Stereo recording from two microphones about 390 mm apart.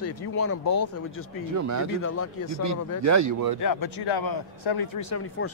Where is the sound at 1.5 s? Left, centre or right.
Right.